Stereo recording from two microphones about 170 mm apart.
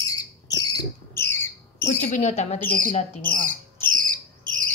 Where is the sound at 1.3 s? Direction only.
15° left (ahead or behind).